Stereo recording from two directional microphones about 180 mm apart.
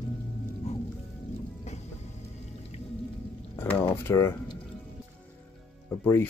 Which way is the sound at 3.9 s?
15° left (ahead or behind).